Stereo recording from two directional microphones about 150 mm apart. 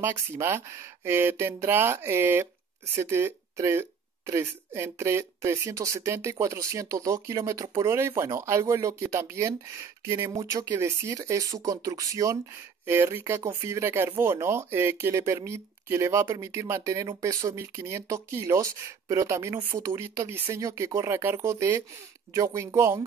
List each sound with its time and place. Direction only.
0.0 s speech: 15° right (ahead or behind)